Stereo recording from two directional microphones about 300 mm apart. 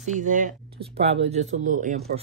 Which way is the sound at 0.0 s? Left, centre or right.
Right.